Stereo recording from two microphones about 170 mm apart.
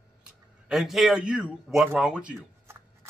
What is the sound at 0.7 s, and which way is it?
A man's voice, centre (ahead or behind).